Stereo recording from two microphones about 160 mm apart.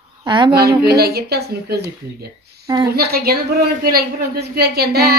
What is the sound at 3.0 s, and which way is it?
A woman's voice, 75° right (ahead or behind).